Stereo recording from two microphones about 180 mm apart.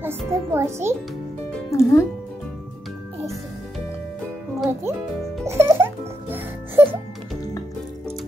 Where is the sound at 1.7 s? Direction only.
15° left (ahead or behind).